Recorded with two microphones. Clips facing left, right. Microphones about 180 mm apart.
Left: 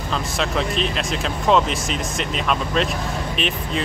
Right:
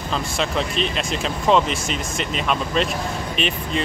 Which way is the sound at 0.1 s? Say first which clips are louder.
Even; centre (ahead or behind).